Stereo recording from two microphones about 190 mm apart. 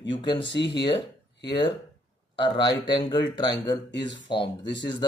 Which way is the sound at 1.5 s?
25° left (ahead or behind).